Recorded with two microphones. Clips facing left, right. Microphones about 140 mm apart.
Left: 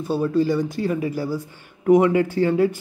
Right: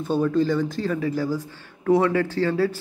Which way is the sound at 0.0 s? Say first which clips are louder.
Left 1 dB; 10° left (ahead or behind).